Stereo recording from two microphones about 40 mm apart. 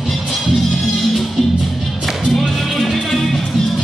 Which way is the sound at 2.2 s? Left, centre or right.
Centre.